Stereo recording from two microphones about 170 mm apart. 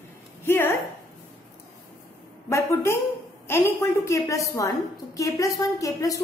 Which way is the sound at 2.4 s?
15° left (ahead or behind).